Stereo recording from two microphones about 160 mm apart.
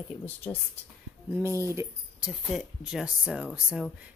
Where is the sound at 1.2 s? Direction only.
15° right (ahead or behind).